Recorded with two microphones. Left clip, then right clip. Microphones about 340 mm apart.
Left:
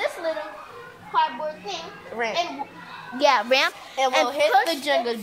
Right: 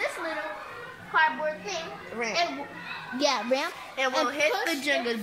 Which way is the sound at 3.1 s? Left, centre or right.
Left.